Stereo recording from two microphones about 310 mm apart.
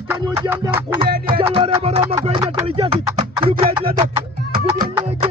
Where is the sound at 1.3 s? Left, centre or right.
Centre.